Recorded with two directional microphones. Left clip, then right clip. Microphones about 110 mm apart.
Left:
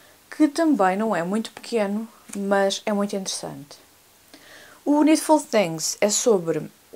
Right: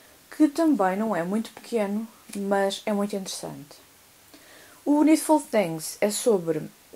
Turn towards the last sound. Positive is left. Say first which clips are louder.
# left 3 dB
turn(degrees=25)  # may be behind; listen again after turning